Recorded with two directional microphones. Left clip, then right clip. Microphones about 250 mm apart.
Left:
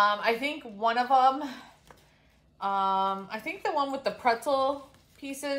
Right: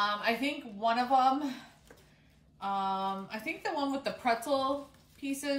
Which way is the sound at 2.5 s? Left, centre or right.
Left.